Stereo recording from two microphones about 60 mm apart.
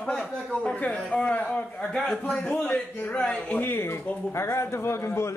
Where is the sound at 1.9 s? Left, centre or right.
Centre.